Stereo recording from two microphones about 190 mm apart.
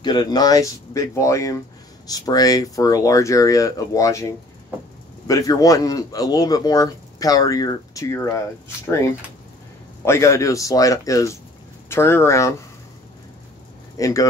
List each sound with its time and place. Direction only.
0.0 s speech: 20° left (ahead or behind)
13.9 s speech: 20° left (ahead or behind)